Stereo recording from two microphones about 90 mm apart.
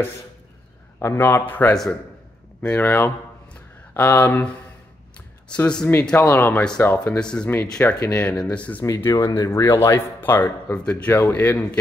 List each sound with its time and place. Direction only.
0.9 s speech: 25° left (ahead or behind)
5.5 s speech: 10° left (ahead or behind)
7.2 s speech: 10° left (ahead or behind)
8.8 s speech: 40° left (ahead or behind); by 11.8 s 20° left (ahead or behind)